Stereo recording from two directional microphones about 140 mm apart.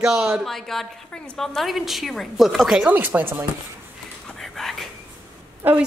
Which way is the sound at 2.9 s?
15° right (ahead or behind).